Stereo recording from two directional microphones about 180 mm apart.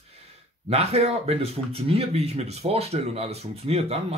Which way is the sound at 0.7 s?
35° right (ahead or behind).